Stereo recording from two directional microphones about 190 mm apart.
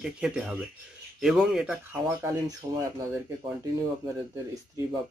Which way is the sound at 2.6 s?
15° right (ahead or behind).